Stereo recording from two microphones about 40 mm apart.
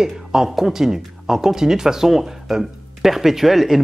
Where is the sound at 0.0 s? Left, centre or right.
Centre.